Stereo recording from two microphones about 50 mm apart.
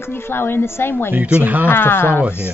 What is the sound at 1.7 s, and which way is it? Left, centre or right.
Speech, left.